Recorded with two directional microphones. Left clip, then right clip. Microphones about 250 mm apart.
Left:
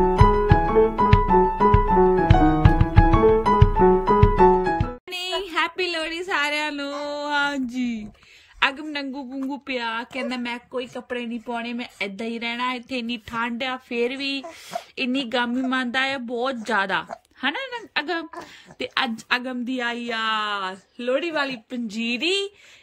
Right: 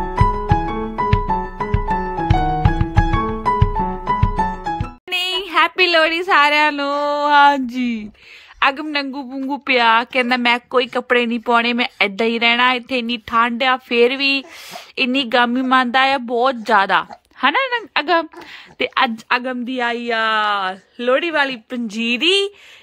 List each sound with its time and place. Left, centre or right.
0.2 s music: centre
8.5 s speech: centre